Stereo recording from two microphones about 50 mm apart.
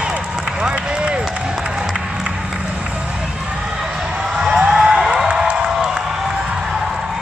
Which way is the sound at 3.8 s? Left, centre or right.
Centre.